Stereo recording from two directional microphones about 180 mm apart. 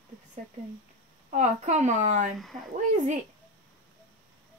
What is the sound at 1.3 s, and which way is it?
A woman's voice, 40° right (ahead or behind).